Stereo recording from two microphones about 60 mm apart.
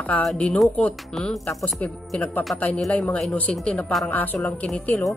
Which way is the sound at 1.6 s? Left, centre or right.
Left.